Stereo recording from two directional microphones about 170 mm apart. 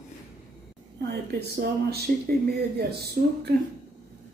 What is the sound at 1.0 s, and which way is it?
Speech, 70° right (ahead or behind).